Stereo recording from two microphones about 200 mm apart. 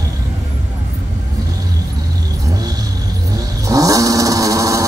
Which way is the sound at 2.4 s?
20° right (ahead or behind).